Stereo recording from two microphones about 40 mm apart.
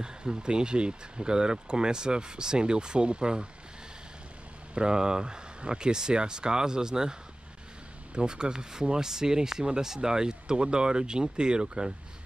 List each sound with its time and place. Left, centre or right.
0.0 s speech: right
4.7 s speech: right